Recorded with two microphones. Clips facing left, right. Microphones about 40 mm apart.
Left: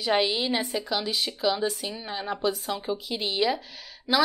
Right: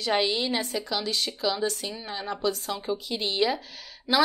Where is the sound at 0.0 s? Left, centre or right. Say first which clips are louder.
Left 1 dB; centre.